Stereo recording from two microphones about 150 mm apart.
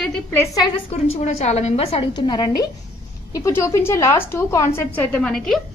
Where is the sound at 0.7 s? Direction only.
40° left (ahead or behind).